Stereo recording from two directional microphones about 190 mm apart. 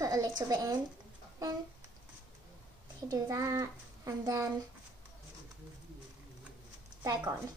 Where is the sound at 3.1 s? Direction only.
15° right (ahead or behind).